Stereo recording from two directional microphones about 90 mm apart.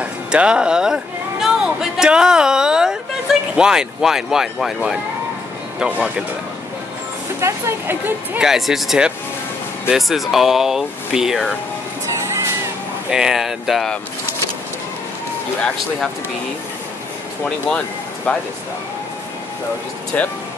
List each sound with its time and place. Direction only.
0.0 s a sound: 10° right (ahead or behind)
3.5 s speech: 5° right (ahead or behind)
7.3 s speech: 30° right (ahead or behind)
8.4 s speech: 5° right (ahead or behind)
13.1 s speech: 5° right (ahead or behind)
17.6 s speech: 10° left (ahead or behind)
20.1 s speech: 15° left (ahead or behind)